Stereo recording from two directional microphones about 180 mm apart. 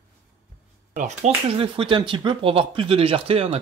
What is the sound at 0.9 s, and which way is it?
Speech, 40° right (ahead or behind).